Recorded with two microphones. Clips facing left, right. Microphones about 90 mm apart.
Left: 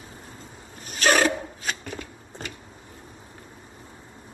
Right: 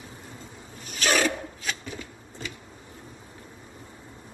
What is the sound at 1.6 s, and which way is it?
Shuffling cards, 55° left (ahead or behind).